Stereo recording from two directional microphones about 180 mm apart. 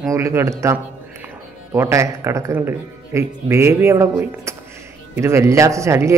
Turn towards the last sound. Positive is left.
turn(degrees=-15)  # may be behind; listen again after turning